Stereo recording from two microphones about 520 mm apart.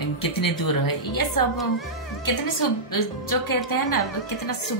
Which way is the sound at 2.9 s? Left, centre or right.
Left.